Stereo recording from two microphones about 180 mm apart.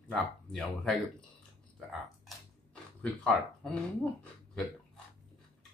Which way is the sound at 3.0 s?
5° left (ahead or behind).